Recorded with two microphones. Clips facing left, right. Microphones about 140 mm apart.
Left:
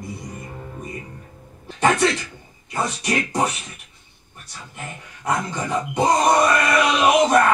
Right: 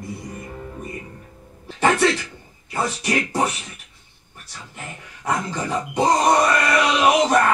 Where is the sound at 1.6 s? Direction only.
15° left (ahead or behind).